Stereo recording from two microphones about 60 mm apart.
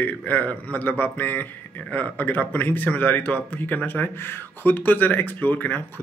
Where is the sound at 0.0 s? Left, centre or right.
Left.